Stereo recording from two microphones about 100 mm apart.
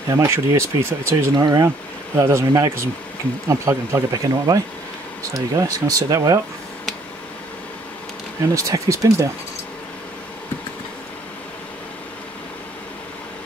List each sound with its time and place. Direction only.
0.1 s speech: 30° right (ahead or behind)
1.3 s speech: 40° right (ahead or behind)
5.6 s speech: 35° right (ahead or behind)
8.5 s speech: 35° right (ahead or behind)